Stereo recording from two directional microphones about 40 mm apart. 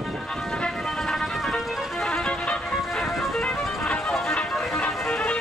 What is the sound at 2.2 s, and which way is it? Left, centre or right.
Music, left.